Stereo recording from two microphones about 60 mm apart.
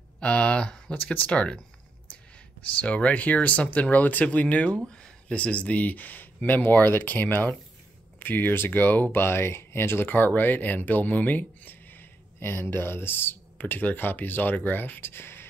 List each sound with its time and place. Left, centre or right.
0.2 s speech: centre
2.6 s speech: left